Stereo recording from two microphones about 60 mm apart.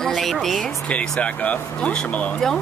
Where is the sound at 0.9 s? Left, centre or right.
Left.